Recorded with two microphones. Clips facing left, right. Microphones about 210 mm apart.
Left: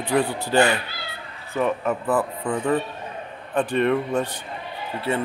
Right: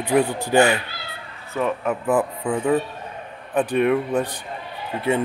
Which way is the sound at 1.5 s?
Centre (ahead or behind).